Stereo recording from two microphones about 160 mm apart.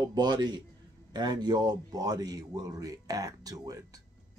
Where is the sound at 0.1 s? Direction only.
25° right (ahead or behind).